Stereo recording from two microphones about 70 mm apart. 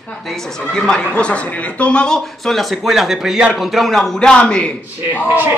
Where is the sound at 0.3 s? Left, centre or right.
Centre.